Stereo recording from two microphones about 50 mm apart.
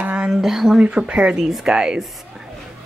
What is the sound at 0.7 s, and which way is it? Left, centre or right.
Speech, right.